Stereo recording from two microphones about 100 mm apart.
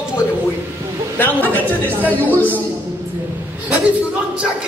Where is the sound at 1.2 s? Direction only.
20° left (ahead or behind).